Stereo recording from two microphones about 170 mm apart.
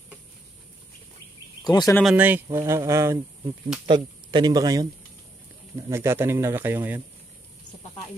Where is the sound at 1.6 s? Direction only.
25° left (ahead or behind).